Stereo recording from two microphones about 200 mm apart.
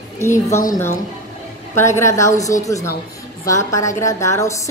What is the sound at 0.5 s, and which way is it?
A woman's voice, 15° left (ahead or behind).